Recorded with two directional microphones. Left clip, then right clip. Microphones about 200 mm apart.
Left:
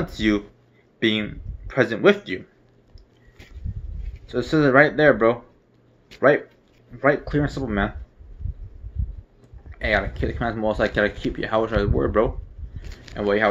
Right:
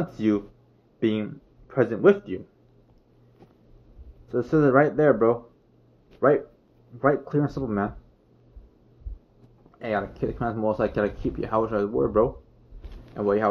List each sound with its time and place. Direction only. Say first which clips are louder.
0.9 s speech: left 4 dB; 15° left (ahead or behind)
4.3 s speech: left 2 dB; 10° left (ahead or behind)
9.7 s speech: left 6 dB; 15° left (ahead or behind)